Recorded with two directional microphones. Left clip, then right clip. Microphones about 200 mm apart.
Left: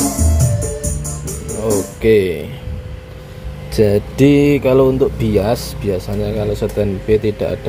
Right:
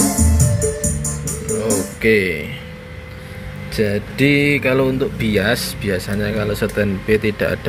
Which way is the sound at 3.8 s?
25° left (ahead or behind).